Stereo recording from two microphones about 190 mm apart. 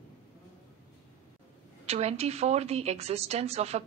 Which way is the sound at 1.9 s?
35° right (ahead or behind).